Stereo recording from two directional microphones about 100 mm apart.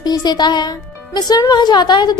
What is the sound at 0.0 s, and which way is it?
A woman's voice, 45° left (ahead or behind).